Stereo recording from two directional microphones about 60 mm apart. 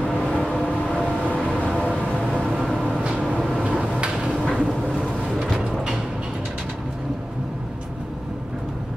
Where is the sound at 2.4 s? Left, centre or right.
Centre.